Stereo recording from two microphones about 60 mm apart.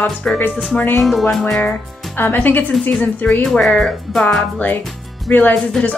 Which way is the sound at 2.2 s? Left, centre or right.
Left.